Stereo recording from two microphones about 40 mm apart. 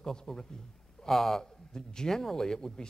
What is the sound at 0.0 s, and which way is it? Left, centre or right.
A man's voice, centre.